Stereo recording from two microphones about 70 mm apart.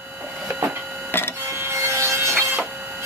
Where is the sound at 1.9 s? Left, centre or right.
Right.